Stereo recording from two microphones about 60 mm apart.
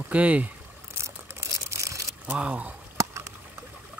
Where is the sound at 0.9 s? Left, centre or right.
Right.